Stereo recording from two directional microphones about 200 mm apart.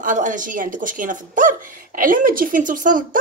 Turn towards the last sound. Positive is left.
turn(degrees=-40)  # may be behind; listen again after turning